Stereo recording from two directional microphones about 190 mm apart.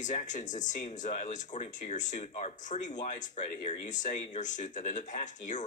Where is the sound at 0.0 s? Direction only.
40° left (ahead or behind).